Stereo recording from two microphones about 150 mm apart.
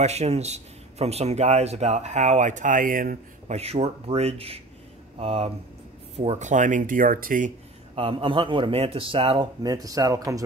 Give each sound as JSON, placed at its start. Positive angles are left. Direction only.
{"t": 0.0, "sound": "a man's voice", "side_deg": -45}
{"t": 3.5, "sound": "a man's voice", "side_deg": -40}
{"t": 7.9, "sound": "a man's voice", "side_deg": -40}
{"t": 9.6, "sound": "speech", "side_deg": -25}